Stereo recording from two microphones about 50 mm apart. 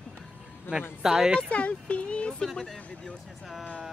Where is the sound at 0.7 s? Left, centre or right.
Left.